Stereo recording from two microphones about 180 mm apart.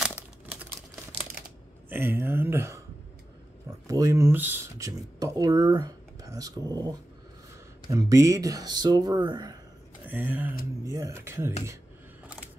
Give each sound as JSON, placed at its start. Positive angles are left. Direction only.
{"t": 0.0, "sound": "crumpling", "side_deg": -10}
{"t": 1.9, "sound": "speech", "side_deg": -10}
{"t": 3.8, "sound": "speech", "side_deg": -20}
{"t": 7.9, "sound": "speech", "side_deg": -20}
{"t": 10.0, "sound": "speech", "side_deg": -10}